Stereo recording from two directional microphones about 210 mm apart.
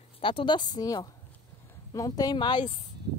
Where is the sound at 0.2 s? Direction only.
25° left (ahead or behind).